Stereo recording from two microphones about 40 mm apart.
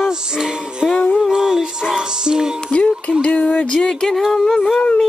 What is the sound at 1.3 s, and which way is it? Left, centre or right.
Speech, centre.